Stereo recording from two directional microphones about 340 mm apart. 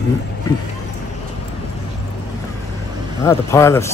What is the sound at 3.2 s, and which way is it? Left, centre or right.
Speech, centre.